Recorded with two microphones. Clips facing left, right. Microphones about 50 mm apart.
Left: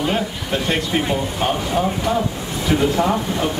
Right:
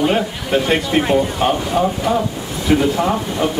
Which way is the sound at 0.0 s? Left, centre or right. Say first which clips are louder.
Right 4 dB; centre.